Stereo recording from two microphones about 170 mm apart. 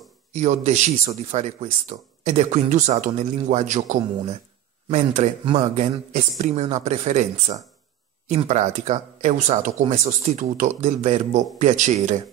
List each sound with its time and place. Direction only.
0.3 s speech: 40° right (ahead or behind)